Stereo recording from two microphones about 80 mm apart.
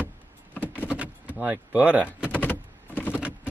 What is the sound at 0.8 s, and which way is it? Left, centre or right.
Power windows, centre.